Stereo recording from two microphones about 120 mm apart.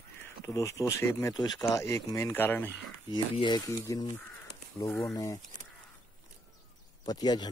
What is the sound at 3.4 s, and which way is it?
Speech, 30° left (ahead or behind).